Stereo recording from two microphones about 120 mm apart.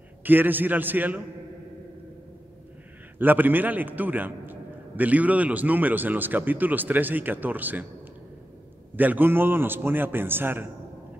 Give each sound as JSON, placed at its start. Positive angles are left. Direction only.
{"t": 0.2, "sound": "a man's voice", "side_deg": -15}
{"t": 3.2, "sound": "a man's voice", "side_deg": -15}
{"t": 8.9, "sound": "a man's voice", "side_deg": -15}